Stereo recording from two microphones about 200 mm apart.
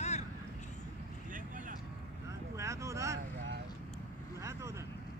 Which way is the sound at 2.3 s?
15° right (ahead or behind).